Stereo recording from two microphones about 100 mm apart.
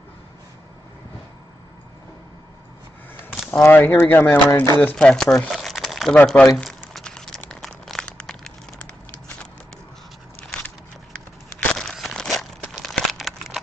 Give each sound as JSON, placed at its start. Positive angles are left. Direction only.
{"t": 3.6, "sound": "speech", "side_deg": 20}
{"t": 5.5, "sound": "crumpling", "side_deg": 0}
{"t": 6.1, "sound": "a sound", "side_deg": 5}
{"t": 7.4, "sound": "crumpling", "side_deg": 5}
{"t": 11.7, "sound": "crumpling", "side_deg": 5}